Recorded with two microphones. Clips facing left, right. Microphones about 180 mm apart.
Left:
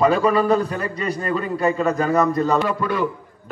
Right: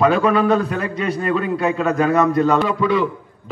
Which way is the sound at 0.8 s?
90° right.